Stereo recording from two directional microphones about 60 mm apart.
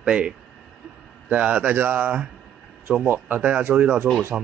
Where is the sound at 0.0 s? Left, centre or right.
Centre.